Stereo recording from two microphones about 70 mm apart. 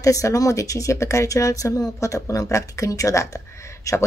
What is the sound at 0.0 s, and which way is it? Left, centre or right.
Speech, left.